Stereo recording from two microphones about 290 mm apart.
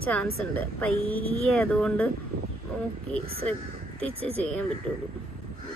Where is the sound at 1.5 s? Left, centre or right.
Centre.